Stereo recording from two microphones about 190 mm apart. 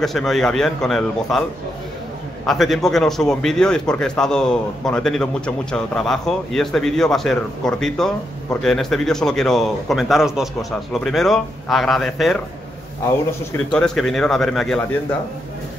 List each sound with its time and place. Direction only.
0.0 s a man's voice: centre (ahead or behind)
2.4 s a man's voice: centre (ahead or behind)
13.7 s a man's voice: 5° left (ahead or behind)